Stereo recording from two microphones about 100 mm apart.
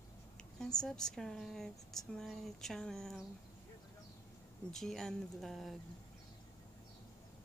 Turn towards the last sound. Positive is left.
turn(degrees=0)  # may be behind; listen again after turning